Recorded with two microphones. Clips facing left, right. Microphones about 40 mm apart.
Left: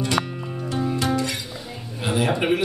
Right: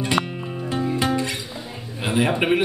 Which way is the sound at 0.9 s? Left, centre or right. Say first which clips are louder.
Right 1 dB; right.